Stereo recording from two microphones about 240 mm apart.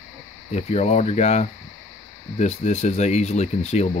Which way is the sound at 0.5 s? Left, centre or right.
Left.